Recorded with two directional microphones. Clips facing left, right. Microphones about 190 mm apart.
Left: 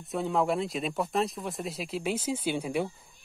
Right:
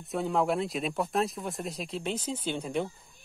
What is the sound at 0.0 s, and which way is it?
Speech, centre (ahead or behind).